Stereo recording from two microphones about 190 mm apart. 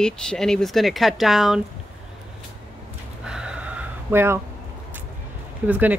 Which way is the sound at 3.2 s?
5° right (ahead or behind).